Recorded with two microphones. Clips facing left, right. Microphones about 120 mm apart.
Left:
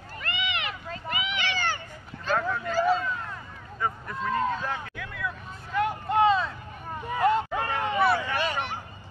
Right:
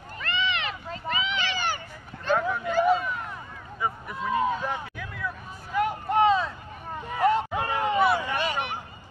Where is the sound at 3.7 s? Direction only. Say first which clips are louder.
Even; 10° right (ahead or behind).